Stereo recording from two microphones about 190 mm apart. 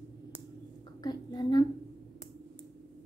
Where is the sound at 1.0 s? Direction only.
20° left (ahead or behind).